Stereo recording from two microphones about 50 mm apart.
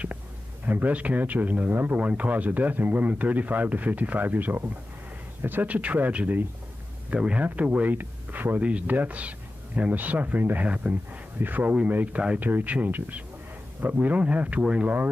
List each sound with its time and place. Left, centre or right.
0.7 s speech: right
8.6 s rub: right
9.8 s speech: right